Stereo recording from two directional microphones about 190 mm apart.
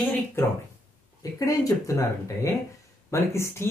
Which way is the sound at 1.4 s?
20° left (ahead or behind).